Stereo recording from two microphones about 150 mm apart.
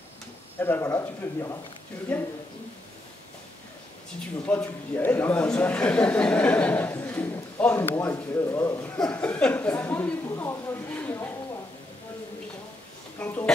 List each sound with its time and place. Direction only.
0.6 s a man's voice: 15° left (ahead or behind)
4.5 s a man's voice: 10° left (ahead or behind)
8.9 s a man's voice: 5° left (ahead or behind)
13.2 s a man's voice: 10° left (ahead or behind)